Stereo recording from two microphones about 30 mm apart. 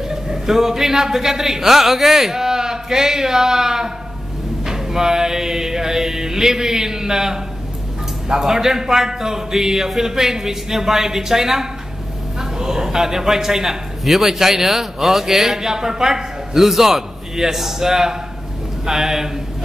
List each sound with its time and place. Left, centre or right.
0.1 s a man's voice: centre